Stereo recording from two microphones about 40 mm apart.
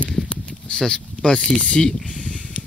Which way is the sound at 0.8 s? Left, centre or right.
Left.